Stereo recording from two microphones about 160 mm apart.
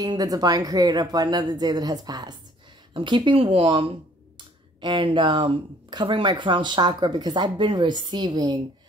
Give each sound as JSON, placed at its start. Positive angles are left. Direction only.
{"t": 0.0, "sound": "speech", "side_deg": -25}